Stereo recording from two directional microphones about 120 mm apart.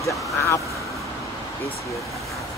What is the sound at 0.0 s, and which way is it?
Vehicle, 25° left (ahead or behind).